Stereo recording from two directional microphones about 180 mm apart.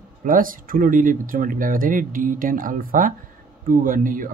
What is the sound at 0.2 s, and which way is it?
Speech, 50° right (ahead or behind).